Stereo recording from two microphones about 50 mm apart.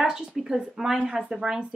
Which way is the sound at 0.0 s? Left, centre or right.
Centre.